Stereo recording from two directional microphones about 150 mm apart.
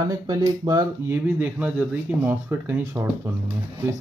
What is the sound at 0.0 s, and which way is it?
Speech, 25° right (ahead or behind).